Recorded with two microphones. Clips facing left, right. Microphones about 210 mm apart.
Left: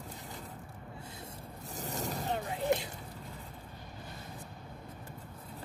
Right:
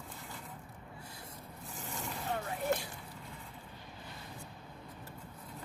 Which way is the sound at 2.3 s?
20° left (ahead or behind).